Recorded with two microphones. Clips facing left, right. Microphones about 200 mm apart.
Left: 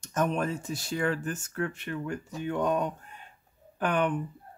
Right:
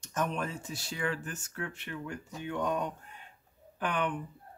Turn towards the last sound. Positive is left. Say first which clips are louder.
# left 5 dB
turn(degrees=45)  # may be behind; listen again after turning